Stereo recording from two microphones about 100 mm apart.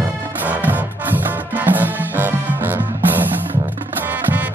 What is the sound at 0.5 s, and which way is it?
Music, 15° right (ahead or behind).